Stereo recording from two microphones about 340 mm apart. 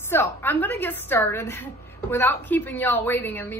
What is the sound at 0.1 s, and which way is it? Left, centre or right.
A woman's voice, centre.